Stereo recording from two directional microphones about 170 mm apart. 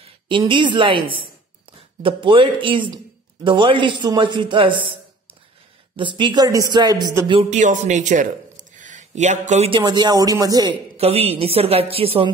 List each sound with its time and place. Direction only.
0.0 s a woman's voice: 30° right (ahead or behind)
5.9 s a man's voice: 30° right (ahead or behind)
7.4 s speech: 45° right (ahead or behind)
9.7 s a man's voice: 25° right (ahead or behind)
11.0 s a woman's voice: 35° right (ahead or behind)